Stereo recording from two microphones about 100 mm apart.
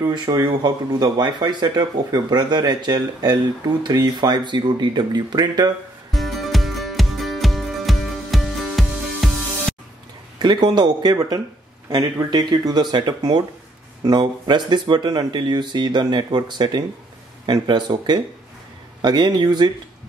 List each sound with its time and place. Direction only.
0.0 s speech: 45° right (ahead or behind)
6.1 s music: centre (ahead or behind)
10.4 s speech: 50° right (ahead or behind)